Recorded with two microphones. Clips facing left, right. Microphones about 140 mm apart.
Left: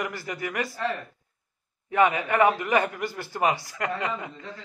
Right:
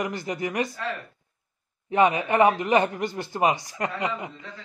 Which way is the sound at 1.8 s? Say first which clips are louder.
Right 1 dB; 25° right (ahead or behind).